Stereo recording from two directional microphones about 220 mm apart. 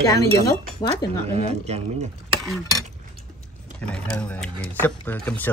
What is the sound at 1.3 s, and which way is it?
Speech, 30° right (ahead or behind).